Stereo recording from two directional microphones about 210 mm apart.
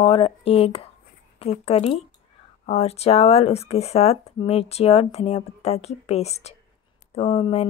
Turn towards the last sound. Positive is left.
turn(degrees=30)  # may be behind; listen again after turning